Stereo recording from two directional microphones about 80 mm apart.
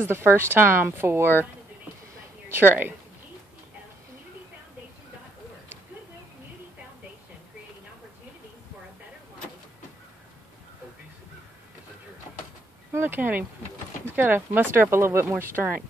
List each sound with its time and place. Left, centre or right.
0.0 s speech: right
2.5 s speech: right
12.9 s speech: right